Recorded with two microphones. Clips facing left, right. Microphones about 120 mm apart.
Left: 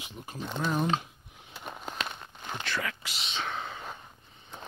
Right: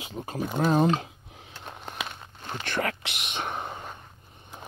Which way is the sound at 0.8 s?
80° right.